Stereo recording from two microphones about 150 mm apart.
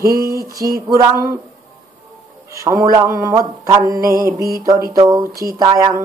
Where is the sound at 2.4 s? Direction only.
20° right (ahead or behind).